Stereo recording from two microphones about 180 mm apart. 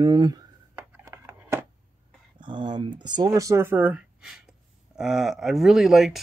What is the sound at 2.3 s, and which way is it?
Speech, 25° right (ahead or behind).